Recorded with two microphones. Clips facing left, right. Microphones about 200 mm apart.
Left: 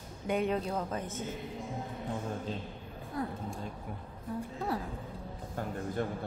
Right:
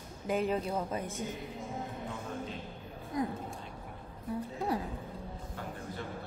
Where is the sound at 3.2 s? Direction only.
15° right (ahead or behind).